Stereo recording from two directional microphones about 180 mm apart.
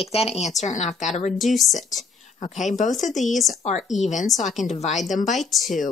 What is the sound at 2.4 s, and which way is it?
Speech, 40° left (ahead or behind).